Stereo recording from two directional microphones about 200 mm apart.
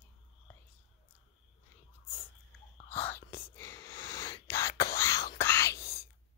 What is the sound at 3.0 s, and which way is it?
Whispering, 10° left (ahead or behind).